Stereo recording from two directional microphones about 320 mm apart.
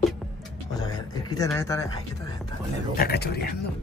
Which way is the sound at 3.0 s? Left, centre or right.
Left.